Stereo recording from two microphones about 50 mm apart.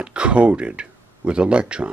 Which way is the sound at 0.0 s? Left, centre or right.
Right.